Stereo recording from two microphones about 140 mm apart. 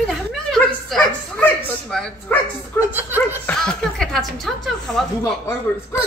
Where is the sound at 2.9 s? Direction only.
15° right (ahead or behind).